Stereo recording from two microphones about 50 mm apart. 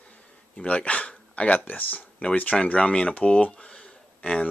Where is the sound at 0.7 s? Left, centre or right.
Left.